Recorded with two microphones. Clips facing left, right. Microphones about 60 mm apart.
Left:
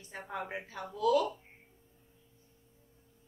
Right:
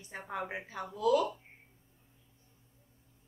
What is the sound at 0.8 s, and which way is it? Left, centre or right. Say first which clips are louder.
Speech: even; right.